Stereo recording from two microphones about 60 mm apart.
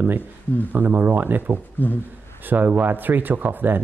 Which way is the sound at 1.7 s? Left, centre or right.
Left.